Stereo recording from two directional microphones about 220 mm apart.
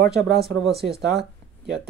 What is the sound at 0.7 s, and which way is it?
Speech, 45° right (ahead or behind).